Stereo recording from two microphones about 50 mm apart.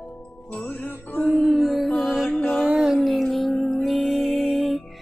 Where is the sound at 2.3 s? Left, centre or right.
Left.